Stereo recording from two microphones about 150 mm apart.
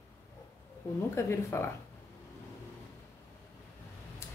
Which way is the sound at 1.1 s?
15° left (ahead or behind).